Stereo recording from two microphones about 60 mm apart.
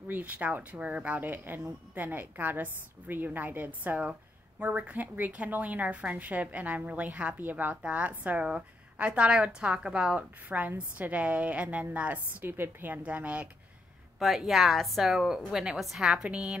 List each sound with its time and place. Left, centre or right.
0.1 s a woman's voice: right
14.2 s a woman's voice: centre